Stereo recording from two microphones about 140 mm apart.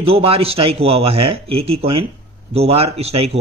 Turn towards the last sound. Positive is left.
turn(degrees=-45)  # may be behind; listen again after turning